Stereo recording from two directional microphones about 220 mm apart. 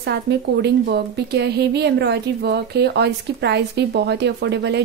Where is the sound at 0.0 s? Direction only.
50° right (ahead or behind).